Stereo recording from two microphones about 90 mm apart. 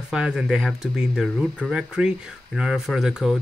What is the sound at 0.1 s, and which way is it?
Speech, 5° right (ahead or behind).